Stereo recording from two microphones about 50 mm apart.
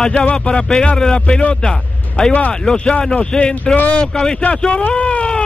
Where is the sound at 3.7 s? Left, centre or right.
Left.